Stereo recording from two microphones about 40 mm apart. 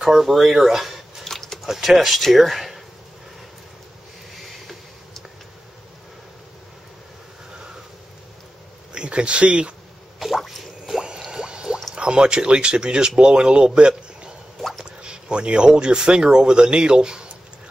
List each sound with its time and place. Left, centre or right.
0.0 s speech: centre
1.2 s a sound: centre
1.7 s speech: centre
4.3 s a sound: centre
8.9 s speech: right
10.1 s squish: centre
11.0 s liquid: centre
11.9 s speech: right
14.6 s a sound: centre
14.9 s speech: right